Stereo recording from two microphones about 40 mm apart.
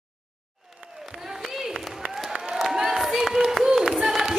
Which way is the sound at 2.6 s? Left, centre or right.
Centre.